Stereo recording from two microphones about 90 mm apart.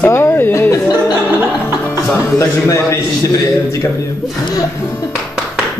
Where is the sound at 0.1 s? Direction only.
30° left (ahead or behind).